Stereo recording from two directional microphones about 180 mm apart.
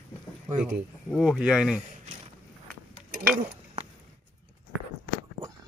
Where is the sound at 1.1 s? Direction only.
Centre (ahead or behind).